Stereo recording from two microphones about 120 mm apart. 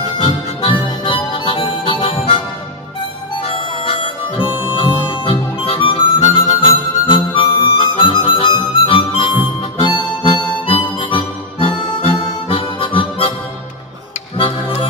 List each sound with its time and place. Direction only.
0.2 s harmonica: 40° left (ahead or behind)
3.3 s harmonica: 50° left (ahead or behind)
4.4 s harmonica: 15° right (ahead or behind)
4.7 s harmonica: 45° left (ahead or behind)
14.3 s music: 45° left (ahead or behind)